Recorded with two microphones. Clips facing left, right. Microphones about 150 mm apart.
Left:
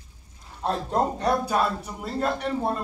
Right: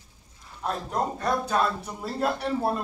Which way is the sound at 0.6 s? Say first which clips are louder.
Left 4 dB; 30° left (ahead or behind).